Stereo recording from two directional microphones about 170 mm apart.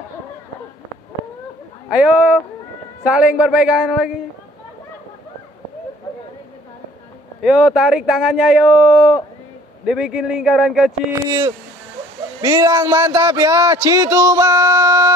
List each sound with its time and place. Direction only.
1.9 s speech: 5° right (ahead or behind)
7.4 s speech: 5° right (ahead or behind)
12.4 s a man's voice: 20° right (ahead or behind)